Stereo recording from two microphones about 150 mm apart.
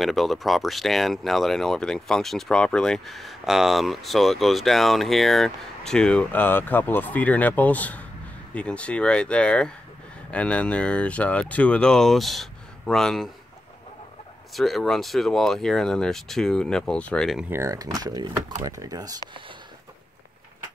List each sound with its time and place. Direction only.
0.0 s speech: centre (ahead or behind)
14.5 s speech: centre (ahead or behind)
17.5 s speech: 20° right (ahead or behind)